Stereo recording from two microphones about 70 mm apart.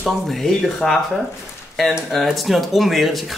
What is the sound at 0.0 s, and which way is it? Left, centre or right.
Speech, centre.